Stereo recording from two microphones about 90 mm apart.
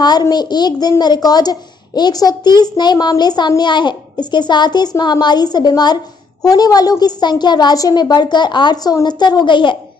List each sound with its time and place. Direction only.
0.0 s a child's voice: 50° left (ahead or behind)